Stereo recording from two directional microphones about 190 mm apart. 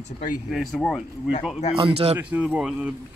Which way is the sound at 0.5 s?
Centre (ahead or behind).